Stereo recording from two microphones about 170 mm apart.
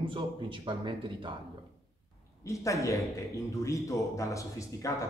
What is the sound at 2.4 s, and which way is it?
A man's voice, 20° left (ahead or behind).